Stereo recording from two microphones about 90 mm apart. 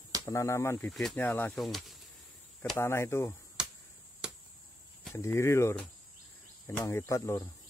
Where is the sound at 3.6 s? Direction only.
10° right (ahead or behind).